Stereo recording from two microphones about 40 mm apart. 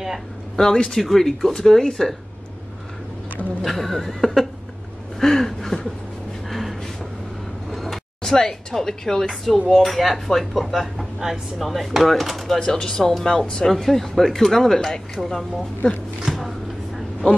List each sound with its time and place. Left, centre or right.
0.6 s a woman's voice: centre
3.6 s speech: centre
5.2 s a sound: centre
8.2 s a woman's voice: centre
12.5 s speech: centre
12.8 s a woman's voice: centre
16.3 s a sound: centre